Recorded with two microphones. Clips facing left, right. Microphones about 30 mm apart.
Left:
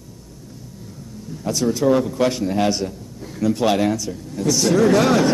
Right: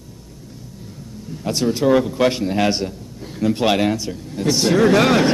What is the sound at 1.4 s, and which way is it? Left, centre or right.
A man's voice, right.